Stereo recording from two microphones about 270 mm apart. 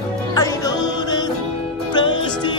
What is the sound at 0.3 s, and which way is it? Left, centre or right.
Music, centre.